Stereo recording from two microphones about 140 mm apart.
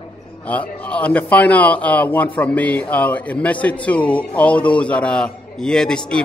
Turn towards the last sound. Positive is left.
turn(degrees=5)  # may be behind; listen again after turning